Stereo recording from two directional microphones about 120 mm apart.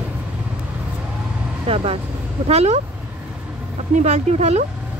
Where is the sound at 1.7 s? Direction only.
55° right (ahead or behind).